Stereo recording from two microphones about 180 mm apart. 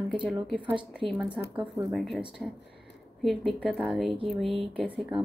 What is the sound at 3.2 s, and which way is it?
A woman's voice, centre (ahead or behind).